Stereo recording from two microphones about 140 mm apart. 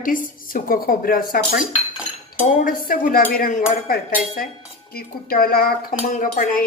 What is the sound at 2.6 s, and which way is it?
Speech, 90° left.